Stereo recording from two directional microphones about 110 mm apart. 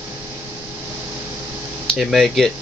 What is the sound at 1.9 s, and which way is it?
Speech, centre (ahead or behind).